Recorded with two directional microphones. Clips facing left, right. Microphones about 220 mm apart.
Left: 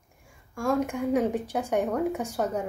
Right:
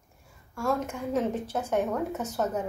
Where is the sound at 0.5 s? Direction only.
15° left (ahead or behind).